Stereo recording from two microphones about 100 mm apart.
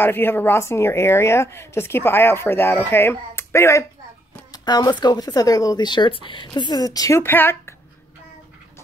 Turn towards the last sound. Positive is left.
turn(degrees=20)  # may be behind; listen again after turning